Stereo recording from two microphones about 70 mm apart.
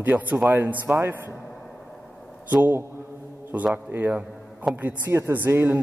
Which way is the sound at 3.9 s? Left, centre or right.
Right.